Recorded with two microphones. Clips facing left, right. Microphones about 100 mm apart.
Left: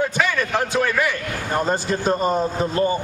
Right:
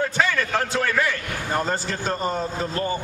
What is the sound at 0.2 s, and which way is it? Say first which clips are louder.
A man's voice: left 1 dB; 15° left (ahead or behind).